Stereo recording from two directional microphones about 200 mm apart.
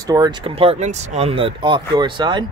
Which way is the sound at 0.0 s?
20° right (ahead or behind).